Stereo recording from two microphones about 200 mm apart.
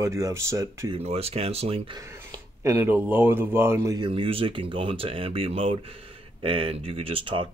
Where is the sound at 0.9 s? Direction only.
30° right (ahead or behind).